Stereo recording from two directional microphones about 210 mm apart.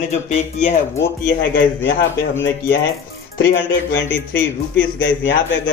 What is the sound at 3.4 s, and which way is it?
Speech, 55° left (ahead or behind).